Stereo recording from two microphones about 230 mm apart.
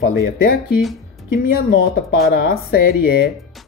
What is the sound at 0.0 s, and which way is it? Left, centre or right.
Speech, left.